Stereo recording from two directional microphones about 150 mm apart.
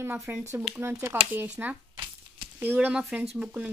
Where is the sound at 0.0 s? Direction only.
15° right (ahead or behind).